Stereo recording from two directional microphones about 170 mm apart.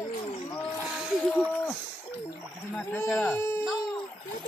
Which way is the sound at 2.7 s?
5° left (ahead or behind).